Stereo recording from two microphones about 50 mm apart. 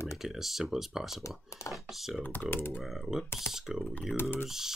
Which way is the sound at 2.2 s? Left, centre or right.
Left.